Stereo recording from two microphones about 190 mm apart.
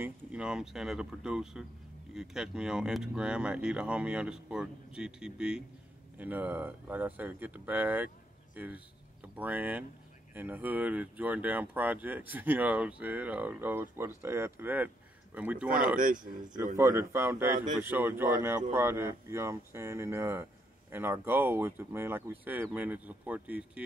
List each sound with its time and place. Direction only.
0.0 s speech: 5° right (ahead or behind)
16.2 s speech: 20° right (ahead or behind)
17.5 s speech: 45° right (ahead or behind)
17.7 s speech: 10° right (ahead or behind)